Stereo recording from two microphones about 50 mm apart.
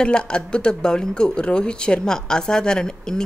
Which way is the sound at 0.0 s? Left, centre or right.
Centre.